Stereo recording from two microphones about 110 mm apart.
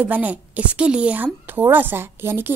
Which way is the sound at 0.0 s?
15° right (ahead or behind).